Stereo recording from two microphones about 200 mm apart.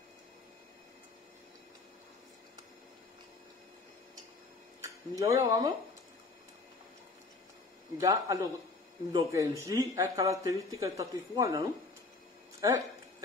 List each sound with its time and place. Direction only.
4.8 s speech: 15° right (ahead or behind)
8.0 s a man's voice: 15° right (ahead or behind)